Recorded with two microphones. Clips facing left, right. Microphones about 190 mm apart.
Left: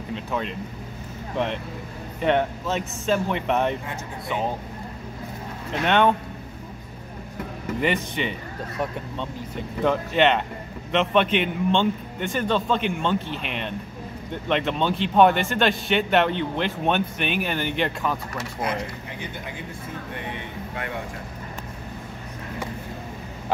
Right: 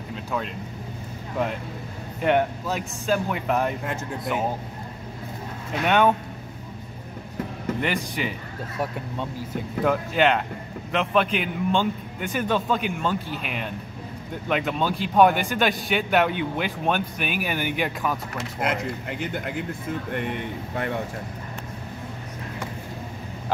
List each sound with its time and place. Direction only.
0.1 s speech: centre (ahead or behind)
2.2 s a man's voice: 5° right (ahead or behind)
5.7 s a man's voice: 5° right (ahead or behind)
7.8 s a man's voice: centre (ahead or behind)